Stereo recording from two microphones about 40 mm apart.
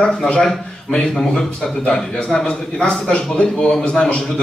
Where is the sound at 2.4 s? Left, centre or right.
Left.